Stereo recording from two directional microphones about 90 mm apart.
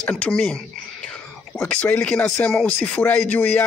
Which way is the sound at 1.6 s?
15° left (ahead or behind).